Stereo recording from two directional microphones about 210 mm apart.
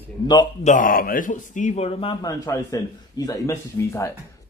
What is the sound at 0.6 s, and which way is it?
Speech, 40° left (ahead or behind).